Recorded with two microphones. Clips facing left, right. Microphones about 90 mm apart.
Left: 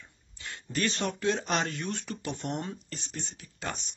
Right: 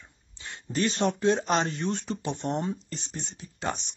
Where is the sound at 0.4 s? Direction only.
25° right (ahead or behind).